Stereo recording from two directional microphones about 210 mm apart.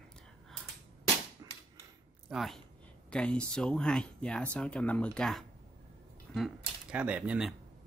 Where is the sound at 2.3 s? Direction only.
Centre (ahead or behind).